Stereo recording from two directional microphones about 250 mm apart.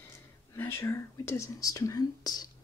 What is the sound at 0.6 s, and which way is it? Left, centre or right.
Speech, centre.